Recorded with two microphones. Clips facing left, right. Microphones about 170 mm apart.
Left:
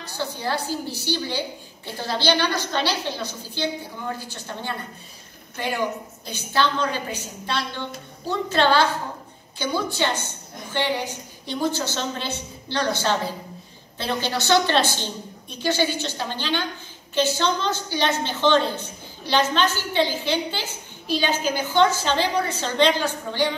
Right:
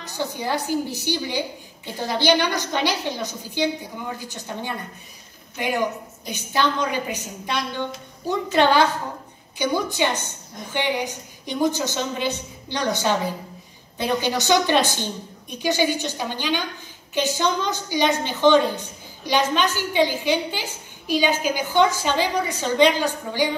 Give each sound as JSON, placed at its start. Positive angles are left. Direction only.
{"t": 0.0, "sound": "a woman's voice", "side_deg": -15}